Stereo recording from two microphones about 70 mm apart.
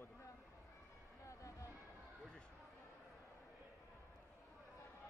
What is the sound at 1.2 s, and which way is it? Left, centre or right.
Music, left.